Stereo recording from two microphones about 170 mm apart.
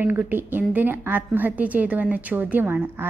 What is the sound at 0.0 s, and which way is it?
A woman's voice, 10° right (ahead or behind).